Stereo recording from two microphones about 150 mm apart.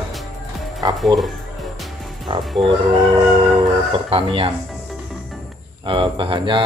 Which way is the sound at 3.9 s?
35° right (ahead or behind).